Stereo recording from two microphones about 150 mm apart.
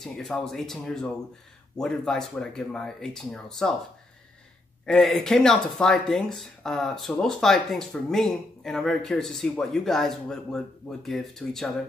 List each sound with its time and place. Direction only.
0.0 s speech: centre (ahead or behind)
4.8 s speech: 5° left (ahead or behind)